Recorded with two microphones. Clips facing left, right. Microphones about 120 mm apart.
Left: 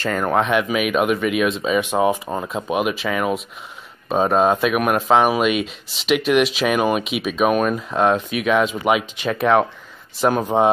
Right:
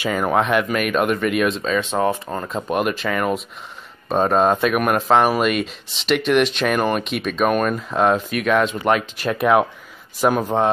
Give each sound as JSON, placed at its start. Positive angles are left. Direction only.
{"t": 0.0, "sound": "speech", "side_deg": -5}